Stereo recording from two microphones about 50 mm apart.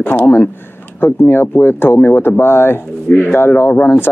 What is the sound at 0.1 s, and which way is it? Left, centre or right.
Speech, left.